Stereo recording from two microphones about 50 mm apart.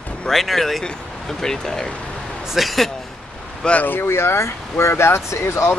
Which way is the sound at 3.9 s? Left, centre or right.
Left.